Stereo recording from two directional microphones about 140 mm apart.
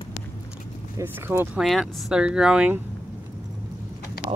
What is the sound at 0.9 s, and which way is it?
Speech, 15° right (ahead or behind).